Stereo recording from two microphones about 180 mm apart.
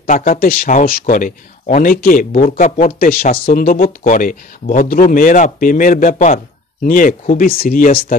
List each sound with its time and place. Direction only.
0.0 s speech: 50° left (ahead or behind)